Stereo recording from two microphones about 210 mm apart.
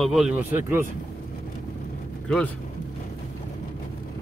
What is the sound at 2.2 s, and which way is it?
Speech, 5° left (ahead or behind).